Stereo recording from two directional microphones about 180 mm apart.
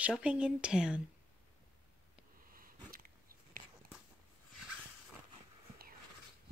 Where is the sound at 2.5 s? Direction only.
50° right (ahead or behind).